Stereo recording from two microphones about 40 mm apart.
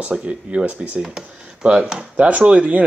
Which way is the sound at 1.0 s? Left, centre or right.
Centre.